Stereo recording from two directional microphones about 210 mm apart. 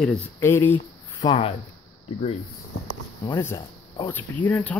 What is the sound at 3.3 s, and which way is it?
Speech, 15° left (ahead or behind).